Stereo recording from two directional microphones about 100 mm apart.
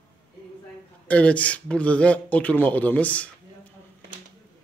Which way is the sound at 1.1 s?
15° left (ahead or behind).